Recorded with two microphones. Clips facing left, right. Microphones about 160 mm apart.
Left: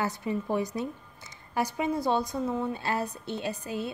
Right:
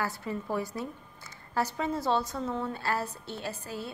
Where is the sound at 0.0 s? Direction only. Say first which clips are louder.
Left 3 dB; 20° left (ahead or behind).